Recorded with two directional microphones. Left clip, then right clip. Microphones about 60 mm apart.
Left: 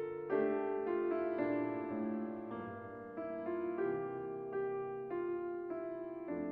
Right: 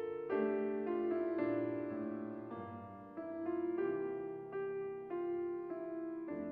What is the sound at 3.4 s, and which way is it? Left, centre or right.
Music, centre.